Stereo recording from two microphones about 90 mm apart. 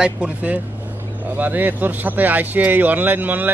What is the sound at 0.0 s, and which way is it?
Speech, 15° right (ahead or behind).